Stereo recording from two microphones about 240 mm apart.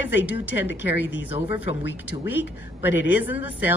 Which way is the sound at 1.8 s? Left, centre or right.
Left.